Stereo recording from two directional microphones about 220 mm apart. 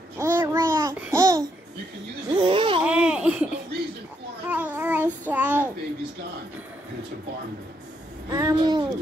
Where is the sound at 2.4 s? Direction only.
25° right (ahead or behind).